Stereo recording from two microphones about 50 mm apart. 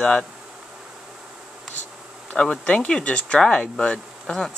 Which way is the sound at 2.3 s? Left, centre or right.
Centre.